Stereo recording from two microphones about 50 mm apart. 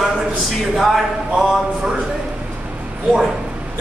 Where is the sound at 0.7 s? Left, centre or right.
Centre.